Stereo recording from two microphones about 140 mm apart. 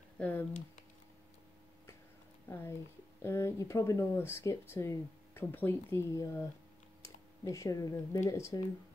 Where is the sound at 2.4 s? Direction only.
15° left (ahead or behind).